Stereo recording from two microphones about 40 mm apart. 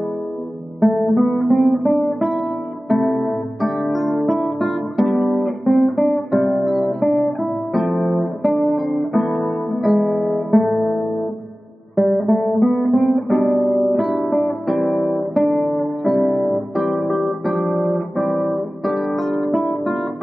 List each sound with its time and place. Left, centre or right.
0.7 s guitar: centre
2.9 s music: centre
5.2 s guitar: centre
12.0 s guitar: centre